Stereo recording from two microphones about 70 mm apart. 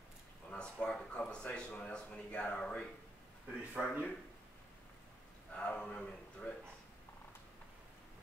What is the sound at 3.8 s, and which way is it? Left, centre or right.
Speech, centre.